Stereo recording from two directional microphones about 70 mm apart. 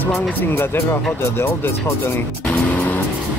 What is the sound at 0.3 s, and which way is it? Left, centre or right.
Speech, left.